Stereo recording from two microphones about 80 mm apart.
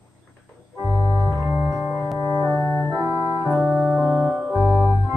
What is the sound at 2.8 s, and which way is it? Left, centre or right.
Organ, right.